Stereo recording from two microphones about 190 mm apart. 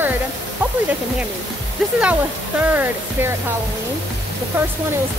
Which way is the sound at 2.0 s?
5° right (ahead or behind).